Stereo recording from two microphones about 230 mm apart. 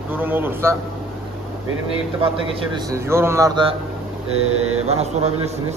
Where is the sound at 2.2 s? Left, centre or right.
Right.